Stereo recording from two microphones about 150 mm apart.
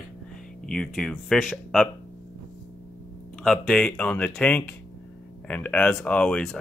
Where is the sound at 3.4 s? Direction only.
5° left (ahead or behind).